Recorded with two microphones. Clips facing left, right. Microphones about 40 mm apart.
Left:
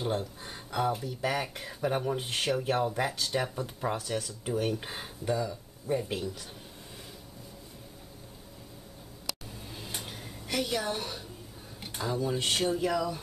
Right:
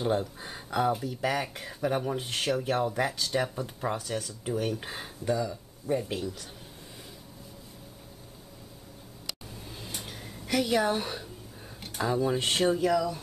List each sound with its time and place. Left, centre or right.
0.0 s speech: centre
9.7 s a sound: centre
10.8 s speech: centre
12.7 s speech: centre